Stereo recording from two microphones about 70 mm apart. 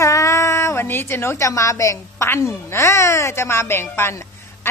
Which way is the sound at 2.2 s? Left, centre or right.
Left.